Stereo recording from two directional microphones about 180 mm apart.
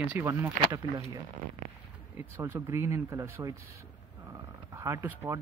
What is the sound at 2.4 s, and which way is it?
Speech, 15° right (ahead or behind).